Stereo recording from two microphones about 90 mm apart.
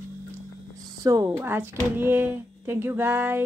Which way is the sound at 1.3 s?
25° right (ahead or behind).